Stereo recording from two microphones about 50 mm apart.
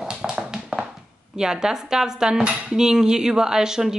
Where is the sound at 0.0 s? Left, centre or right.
Centre.